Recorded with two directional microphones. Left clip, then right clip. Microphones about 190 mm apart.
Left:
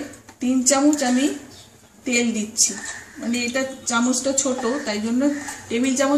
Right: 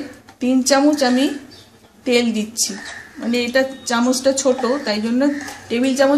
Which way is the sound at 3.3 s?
45° right (ahead or behind).